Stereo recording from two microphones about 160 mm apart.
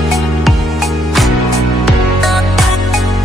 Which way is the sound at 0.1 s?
Centre (ahead or behind).